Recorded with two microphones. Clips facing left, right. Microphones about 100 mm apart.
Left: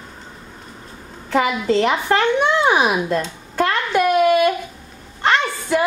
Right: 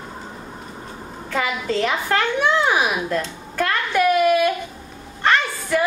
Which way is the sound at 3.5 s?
25° left (ahead or behind).